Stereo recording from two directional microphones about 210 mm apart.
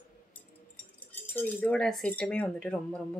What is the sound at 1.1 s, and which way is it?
Speech, 10° left (ahead or behind).